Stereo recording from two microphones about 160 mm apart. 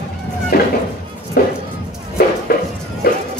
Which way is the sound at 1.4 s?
70° left (ahead or behind).